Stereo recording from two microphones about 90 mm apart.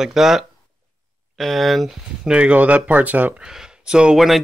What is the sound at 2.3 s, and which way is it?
Speech, 15° right (ahead or behind).